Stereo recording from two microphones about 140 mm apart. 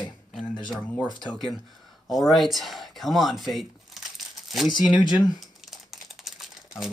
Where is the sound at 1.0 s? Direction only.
30° left (ahead or behind).